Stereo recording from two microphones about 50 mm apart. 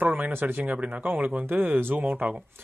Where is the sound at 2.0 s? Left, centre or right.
Right.